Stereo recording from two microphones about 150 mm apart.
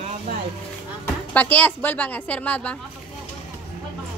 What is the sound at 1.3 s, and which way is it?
A woman's voice, 10° left (ahead or behind).